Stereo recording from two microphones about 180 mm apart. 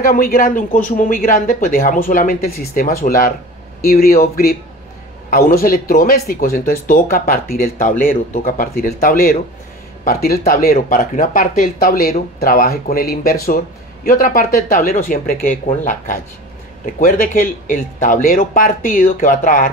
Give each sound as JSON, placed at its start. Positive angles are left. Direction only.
{"t": 0.0, "sound": "speech", "side_deg": 55}